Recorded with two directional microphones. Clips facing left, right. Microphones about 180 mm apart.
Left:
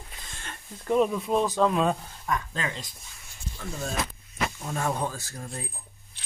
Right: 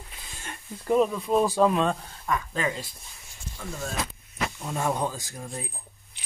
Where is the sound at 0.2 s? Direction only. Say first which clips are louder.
Right 2 dB; 10° right (ahead or behind).